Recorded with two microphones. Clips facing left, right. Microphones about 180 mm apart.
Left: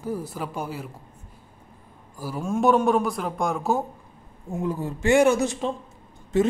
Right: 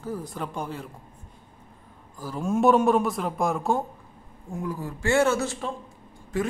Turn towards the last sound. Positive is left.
turn(degrees=25)  # may be behind; listen again after turning